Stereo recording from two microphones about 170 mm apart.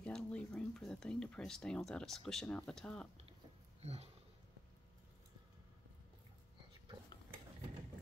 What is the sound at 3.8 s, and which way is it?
Speech, 35° right (ahead or behind).